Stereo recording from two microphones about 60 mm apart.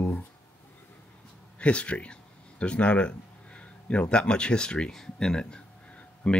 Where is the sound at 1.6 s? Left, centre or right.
Centre.